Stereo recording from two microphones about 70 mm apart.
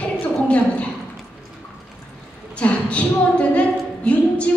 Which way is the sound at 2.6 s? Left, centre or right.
Centre.